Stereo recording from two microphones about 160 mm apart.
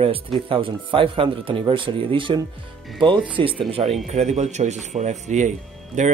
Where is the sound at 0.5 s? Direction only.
35° right (ahead or behind).